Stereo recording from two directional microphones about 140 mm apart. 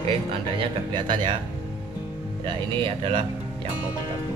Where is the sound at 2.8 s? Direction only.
40° right (ahead or behind).